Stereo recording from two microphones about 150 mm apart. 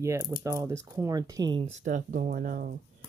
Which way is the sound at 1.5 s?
50° right (ahead or behind).